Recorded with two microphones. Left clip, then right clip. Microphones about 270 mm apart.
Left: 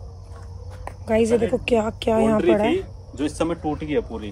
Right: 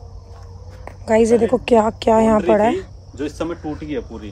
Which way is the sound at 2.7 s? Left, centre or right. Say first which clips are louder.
Even; left.